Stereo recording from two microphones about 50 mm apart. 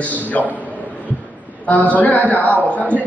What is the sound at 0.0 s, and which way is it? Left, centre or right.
Speech, left.